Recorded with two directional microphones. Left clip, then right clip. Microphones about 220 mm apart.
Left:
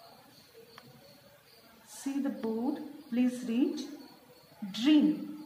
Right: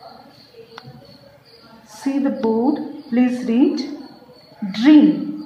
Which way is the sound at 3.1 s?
40° left (ahead or behind).